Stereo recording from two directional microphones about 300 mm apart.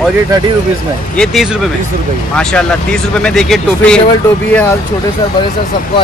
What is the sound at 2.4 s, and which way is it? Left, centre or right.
Speech, centre.